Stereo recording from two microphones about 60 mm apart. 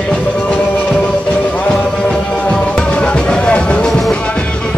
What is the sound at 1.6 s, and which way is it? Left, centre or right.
Music, centre.